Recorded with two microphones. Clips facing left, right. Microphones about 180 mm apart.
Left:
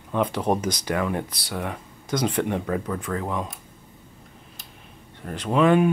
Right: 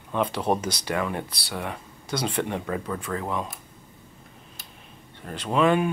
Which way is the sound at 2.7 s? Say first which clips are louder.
Left 2 dB; 20° right (ahead or behind).